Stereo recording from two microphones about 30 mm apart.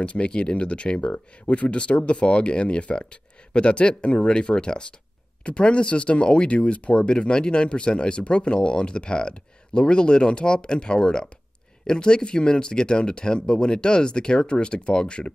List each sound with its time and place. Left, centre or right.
0.2 s speech: left